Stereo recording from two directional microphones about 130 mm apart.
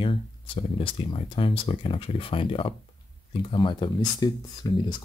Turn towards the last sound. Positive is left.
turn(degrees=35)  # may be behind; listen again after turning